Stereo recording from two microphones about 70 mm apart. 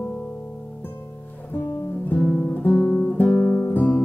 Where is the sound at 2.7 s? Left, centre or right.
Centre.